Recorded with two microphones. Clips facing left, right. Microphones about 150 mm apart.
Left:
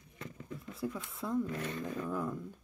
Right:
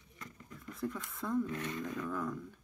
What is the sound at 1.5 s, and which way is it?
Speech, 30° left (ahead or behind).